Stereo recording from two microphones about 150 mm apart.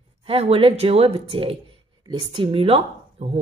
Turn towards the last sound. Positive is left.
turn(degrees=-40)  # may be behind; listen again after turning